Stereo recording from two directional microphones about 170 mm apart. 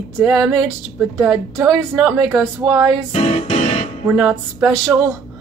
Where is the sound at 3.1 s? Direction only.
40° left (ahead or behind).